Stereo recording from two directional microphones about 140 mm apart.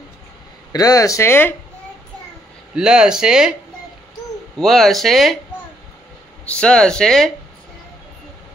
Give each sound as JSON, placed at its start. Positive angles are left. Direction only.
{"t": 0.7, "sound": "speech", "side_deg": 25}
{"t": 2.7, "sound": "speech", "side_deg": -5}
{"t": 4.6, "sound": "speech", "side_deg": 0}
{"t": 6.4, "sound": "speech", "side_deg": 5}